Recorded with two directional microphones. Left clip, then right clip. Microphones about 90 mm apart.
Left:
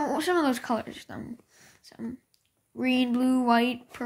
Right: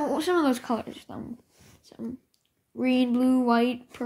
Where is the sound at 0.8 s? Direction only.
35° left (ahead or behind).